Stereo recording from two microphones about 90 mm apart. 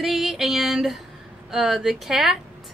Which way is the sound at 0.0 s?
5° right (ahead or behind).